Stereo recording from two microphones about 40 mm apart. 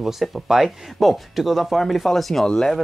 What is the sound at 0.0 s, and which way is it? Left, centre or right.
Speech, centre.